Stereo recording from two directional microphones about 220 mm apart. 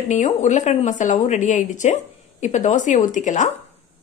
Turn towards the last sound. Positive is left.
turn(degrees=35)  # may be behind; listen again after turning